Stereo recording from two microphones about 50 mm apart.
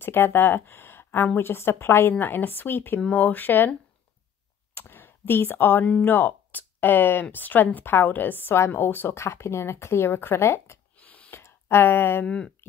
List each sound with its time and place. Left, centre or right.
0.0 s a woman's voice: left
4.7 s a woman's voice: left
9.1 s speech: left
11.0 s gasp: left
11.3 s a sound: left
12.3 s speech: left